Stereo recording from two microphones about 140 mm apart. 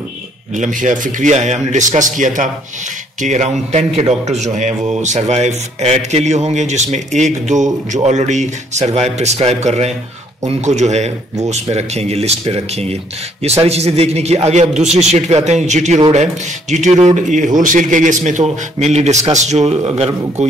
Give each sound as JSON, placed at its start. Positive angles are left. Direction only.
{"t": 0.6, "sound": "a man's voice", "side_deg": -65}